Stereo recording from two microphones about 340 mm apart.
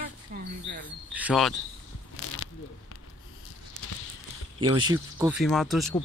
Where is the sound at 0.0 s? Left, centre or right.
Right.